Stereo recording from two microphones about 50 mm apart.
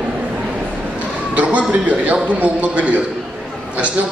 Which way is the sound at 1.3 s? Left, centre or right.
Right.